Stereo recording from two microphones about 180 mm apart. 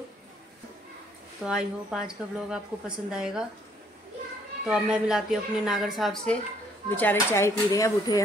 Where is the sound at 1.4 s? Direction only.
5° right (ahead or behind).